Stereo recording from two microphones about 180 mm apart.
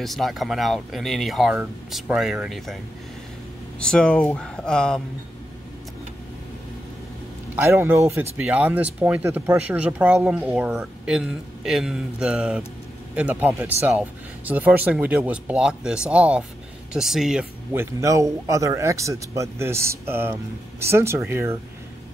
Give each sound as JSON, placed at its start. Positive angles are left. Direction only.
{"t": 0.0, "sound": "speech", "side_deg": 0}
{"t": 3.8, "sound": "speech", "side_deg": 5}
{"t": 7.5, "sound": "speech", "side_deg": -15}
{"t": 18.0, "sound": "speech", "side_deg": -15}